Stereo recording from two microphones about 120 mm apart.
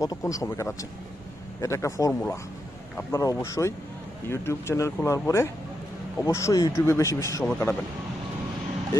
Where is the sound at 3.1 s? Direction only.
25° left (ahead or behind).